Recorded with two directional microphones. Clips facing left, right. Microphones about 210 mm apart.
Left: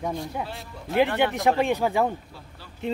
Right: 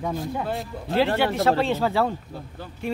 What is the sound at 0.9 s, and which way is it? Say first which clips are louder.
Speech: right 1 dB; 15° left (ahead or behind).